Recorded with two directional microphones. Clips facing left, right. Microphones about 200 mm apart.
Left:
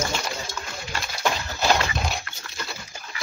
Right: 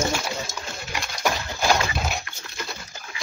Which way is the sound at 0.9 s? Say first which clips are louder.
Right 1 dB; 10° right (ahead or behind).